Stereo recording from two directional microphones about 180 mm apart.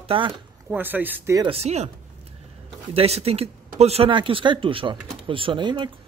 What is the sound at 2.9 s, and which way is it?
Speech, 35° right (ahead or behind).